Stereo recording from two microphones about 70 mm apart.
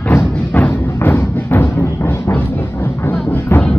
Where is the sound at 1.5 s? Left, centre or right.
Left.